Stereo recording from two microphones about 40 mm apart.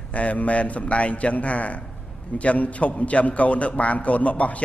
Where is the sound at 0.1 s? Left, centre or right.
Left.